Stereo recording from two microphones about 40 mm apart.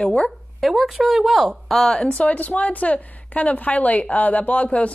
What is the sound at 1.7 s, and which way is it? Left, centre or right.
Speech, centre.